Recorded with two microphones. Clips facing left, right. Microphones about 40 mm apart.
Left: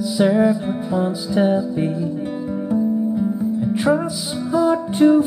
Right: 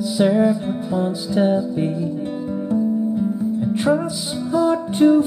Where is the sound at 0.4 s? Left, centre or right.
Centre.